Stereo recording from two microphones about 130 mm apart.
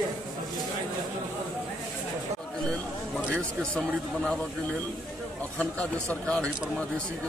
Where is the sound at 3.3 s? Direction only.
5° left (ahead or behind).